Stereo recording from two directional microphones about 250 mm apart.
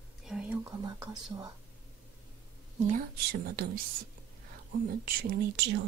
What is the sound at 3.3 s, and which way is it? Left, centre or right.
Speech, right.